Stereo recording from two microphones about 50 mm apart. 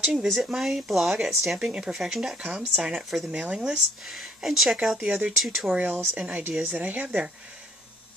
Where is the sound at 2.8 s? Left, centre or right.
Centre.